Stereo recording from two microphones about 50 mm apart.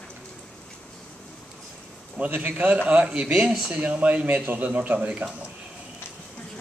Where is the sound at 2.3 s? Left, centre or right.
Right.